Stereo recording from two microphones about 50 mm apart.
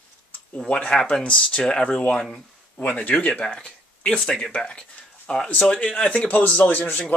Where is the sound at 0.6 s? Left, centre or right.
Left.